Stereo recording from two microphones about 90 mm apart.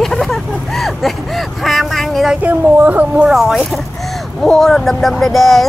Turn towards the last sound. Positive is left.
turn(degrees=0)  # may be behind; listen again after turning